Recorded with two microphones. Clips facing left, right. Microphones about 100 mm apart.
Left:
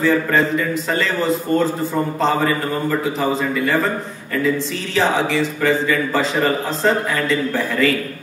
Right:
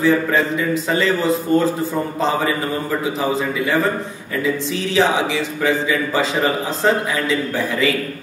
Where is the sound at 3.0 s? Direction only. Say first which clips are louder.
Even; 10° right (ahead or behind).